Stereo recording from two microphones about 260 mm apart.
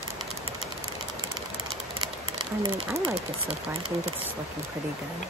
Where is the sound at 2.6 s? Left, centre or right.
Centre.